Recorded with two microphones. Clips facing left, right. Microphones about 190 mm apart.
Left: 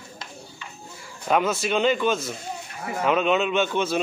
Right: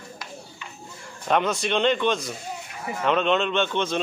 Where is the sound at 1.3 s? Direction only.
5° left (ahead or behind).